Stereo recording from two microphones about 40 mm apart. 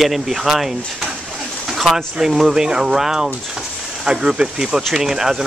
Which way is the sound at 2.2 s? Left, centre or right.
Centre.